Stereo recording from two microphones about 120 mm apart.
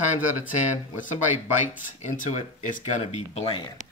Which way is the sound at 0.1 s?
85° left.